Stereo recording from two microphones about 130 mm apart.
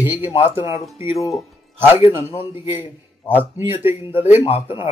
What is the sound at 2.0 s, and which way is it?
Speech, 15° right (ahead or behind).